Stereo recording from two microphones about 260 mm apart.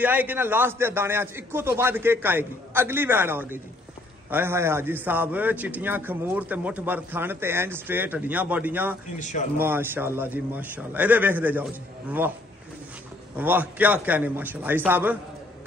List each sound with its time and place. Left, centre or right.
0.0 s a man's voice: centre
9.2 s speech: left
9.6 s a man's voice: centre
13.4 s a man's voice: centre